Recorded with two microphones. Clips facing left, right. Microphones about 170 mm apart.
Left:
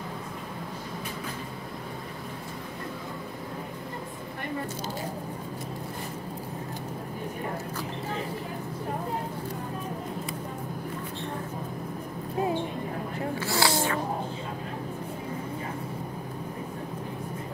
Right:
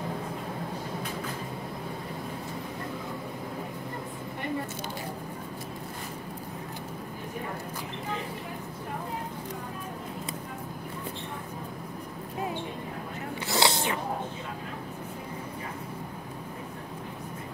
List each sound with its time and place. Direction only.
13.5 s snort: 20° right (ahead or behind)